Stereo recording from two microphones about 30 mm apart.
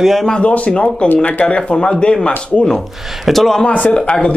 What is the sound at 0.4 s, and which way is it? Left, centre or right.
Speech, left.